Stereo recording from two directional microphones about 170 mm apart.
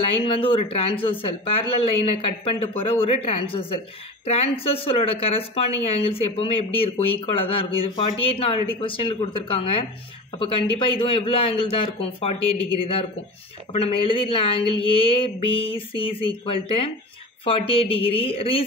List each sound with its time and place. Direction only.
0.2 s speech: 30° left (ahead or behind)
13.7 s speech: 30° left (ahead or behind)